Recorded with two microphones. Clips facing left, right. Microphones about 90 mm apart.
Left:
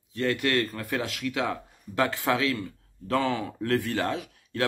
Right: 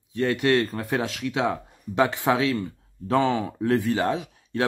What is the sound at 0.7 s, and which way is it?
Speech, 40° right (ahead or behind).